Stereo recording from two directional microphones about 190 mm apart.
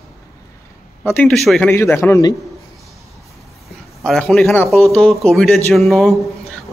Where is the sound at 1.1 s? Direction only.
5° left (ahead or behind).